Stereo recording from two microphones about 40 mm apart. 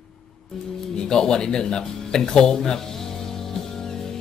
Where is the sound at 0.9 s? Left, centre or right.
Centre.